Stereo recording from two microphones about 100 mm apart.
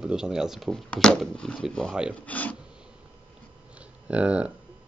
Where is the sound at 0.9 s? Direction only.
10° left (ahead or behind).